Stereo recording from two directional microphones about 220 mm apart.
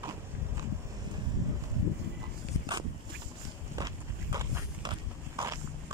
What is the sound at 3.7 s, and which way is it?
Walk, 15° right (ahead or behind).